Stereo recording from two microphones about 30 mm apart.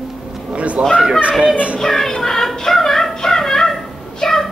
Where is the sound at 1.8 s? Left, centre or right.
Centre.